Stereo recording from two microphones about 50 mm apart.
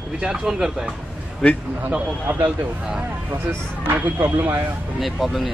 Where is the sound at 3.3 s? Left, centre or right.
Right.